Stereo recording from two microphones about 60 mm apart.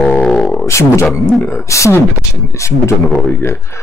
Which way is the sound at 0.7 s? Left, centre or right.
Left.